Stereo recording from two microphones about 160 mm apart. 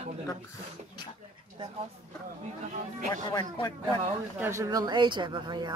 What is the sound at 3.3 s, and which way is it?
Speech, 25° left (ahead or behind).